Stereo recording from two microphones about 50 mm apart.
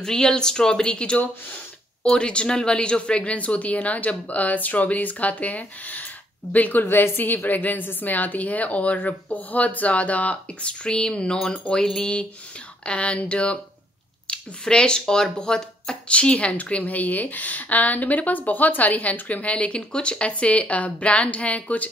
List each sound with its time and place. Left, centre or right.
0.0 s a woman's voice: centre
12.0 s speech: left